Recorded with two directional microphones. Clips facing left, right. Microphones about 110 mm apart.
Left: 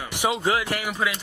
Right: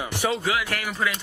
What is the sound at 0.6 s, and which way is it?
Speech, 15° left (ahead or behind).